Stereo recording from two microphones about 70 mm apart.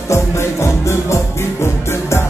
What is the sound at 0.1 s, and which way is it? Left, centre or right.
Music, left.